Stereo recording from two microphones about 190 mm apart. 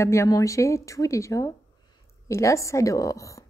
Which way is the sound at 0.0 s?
15° left (ahead or behind).